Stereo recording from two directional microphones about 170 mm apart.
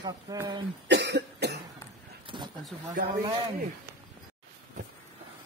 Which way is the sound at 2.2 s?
30° right (ahead or behind).